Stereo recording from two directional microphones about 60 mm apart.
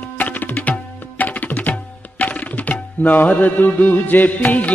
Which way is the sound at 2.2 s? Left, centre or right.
Left.